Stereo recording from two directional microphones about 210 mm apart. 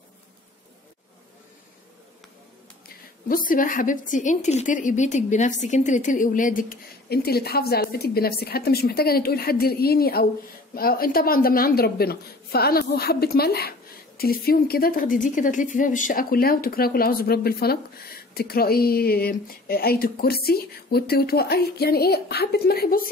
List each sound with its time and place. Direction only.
3.3 s a woman's voice: 40° left (ahead or behind)